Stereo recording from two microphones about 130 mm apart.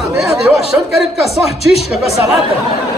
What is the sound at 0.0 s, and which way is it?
Speech, centre (ahead or behind).